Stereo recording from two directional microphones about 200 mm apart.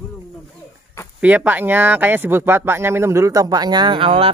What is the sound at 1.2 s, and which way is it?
A man's voice, 10° right (ahead or behind).